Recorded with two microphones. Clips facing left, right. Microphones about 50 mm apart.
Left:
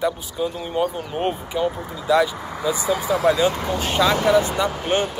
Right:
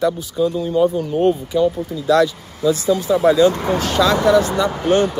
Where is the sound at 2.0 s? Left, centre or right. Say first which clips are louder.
Right 3 dB; centre.